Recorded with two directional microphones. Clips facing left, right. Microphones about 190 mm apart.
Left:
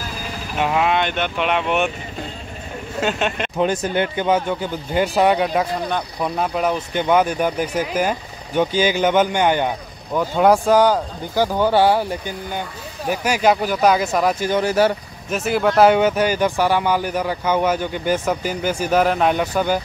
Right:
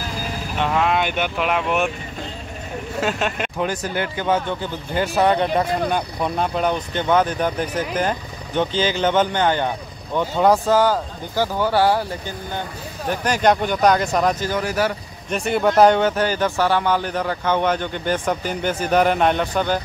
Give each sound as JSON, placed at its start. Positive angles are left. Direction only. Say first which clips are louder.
{"t": 0.6, "sound": "speech", "louder": "left 1 dB", "side_deg": 10}
{"t": 0.9, "sound": "speech", "louder": "left 1 dB", "side_deg": -5}
{"t": 3.0, "sound": "speech", "louder": "left 2 dB", "side_deg": 0}
{"t": 3.5, "sound": "speech", "louder": "left 8 dB", "side_deg": 25}
{"t": 5.9, "sound": "speech", "louder": "right 1 dB", "side_deg": -5}
{"t": 14.5, "sound": "speech", "louder": "left 5 dB", "side_deg": 25}
{"t": 15.2, "sound": "speech", "louder": "even", "side_deg": 5}